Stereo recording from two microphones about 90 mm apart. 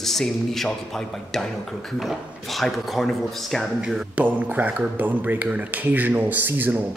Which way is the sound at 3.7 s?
10° right (ahead or behind).